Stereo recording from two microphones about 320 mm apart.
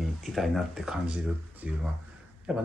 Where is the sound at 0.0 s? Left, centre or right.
Centre.